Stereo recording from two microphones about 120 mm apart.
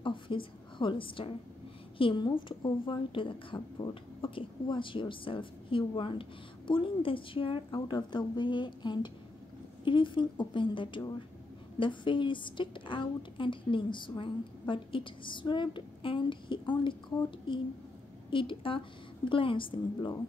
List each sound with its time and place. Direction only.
0.0 s a woman's voice: 45° left (ahead or behind)